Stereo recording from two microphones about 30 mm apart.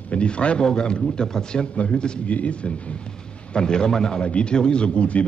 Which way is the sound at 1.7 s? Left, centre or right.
Left.